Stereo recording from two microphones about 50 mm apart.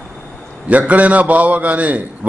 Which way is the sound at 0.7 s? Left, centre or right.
Right.